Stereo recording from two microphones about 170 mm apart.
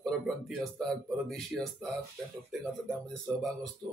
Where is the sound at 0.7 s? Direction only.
5° left (ahead or behind).